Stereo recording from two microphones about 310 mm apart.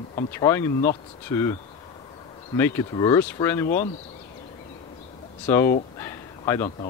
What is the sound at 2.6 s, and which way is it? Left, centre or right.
Speech, centre.